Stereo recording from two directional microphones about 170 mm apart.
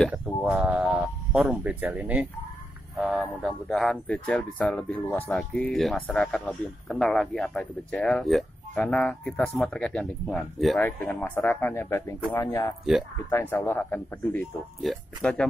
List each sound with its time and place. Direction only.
0.1 s a sound: 10° right (ahead or behind)
3.0 s speech: 5° right (ahead or behind); by 14.4 s 10° left (ahead or behind)
14.8 s speech: centre (ahead or behind)